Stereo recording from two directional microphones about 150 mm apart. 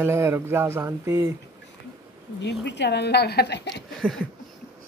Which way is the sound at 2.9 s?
90° left.